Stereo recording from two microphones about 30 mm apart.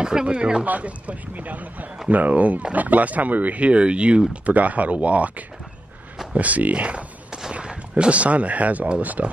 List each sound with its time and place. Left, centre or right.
0.0 s speech: right
0.7 s speech: right
3.6 s speech: right
4.3 s speech: right
6.3 s speech: right
7.6 s a sound: right
8.1 s speech: right